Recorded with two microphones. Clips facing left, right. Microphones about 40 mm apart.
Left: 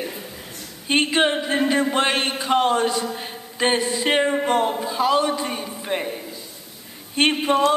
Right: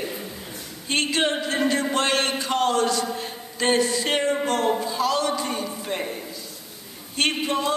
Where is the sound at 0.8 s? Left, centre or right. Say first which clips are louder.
Left 4 dB; left.